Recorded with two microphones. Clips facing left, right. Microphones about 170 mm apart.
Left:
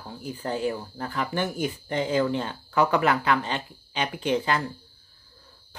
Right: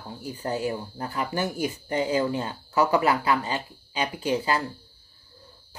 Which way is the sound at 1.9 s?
10° right (ahead or behind).